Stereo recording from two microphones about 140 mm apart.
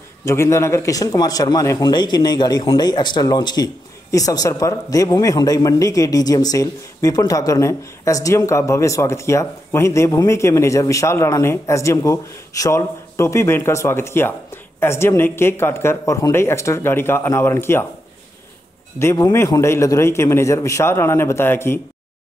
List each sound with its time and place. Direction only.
0.2 s speech: 20° left (ahead or behind)
18.9 s speech: 20° left (ahead or behind)